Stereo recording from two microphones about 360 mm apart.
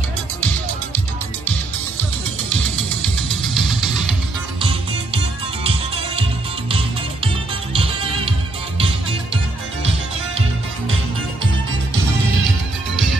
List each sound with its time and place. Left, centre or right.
2.9 s music: centre
4.6 s music: centre
7.7 s music: centre